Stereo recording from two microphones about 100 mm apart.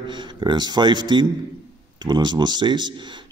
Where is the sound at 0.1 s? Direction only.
50° right (ahead or behind).